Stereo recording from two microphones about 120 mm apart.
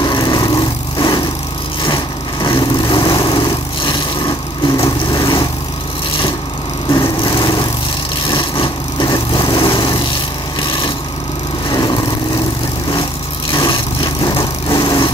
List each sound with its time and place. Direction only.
0.0 s vehicle: 35° left (ahead or behind)
2.4 s vehicle: 40° left (ahead or behind)
5.2 s vehicle: 40° left (ahead or behind)
6.9 s lawn mower: 30° left (ahead or behind)
11.7 s vehicle: 35° left (ahead or behind)
13.5 s vehicle: 25° left (ahead or behind)
14.0 s vehicle: 45° left (ahead or behind)
14.4 s lawn mower: 35° left (ahead or behind)